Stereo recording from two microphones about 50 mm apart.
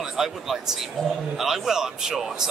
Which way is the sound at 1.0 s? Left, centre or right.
Centre.